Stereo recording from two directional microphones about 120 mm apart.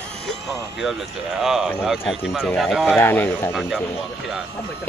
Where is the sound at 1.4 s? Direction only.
5° right (ahead or behind).